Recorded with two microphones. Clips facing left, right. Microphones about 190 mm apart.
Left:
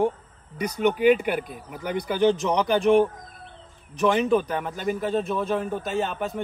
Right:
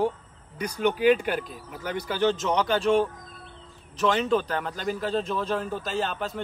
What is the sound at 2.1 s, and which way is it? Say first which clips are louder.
A man's voice: left 3 dB; 15° left (ahead or behind).